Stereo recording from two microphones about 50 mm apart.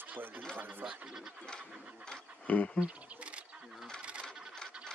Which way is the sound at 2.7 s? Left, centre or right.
Right.